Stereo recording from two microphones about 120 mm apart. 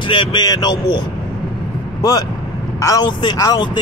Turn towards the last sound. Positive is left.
turn(degrees=35)  # may be behind; listen again after turning